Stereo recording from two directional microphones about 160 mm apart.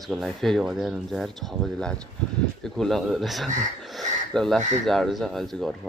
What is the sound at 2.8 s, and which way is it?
Speech, centre (ahead or behind).